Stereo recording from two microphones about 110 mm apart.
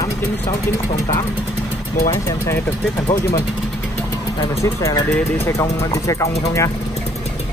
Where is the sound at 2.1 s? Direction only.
25° left (ahead or behind).